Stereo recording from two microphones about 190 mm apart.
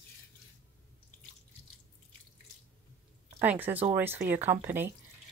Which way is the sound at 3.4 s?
10° right (ahead or behind).